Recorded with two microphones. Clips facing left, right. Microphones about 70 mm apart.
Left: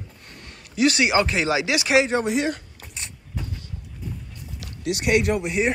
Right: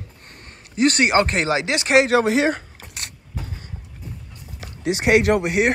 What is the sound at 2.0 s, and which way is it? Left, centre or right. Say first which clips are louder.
Speech: right 5 dB; right.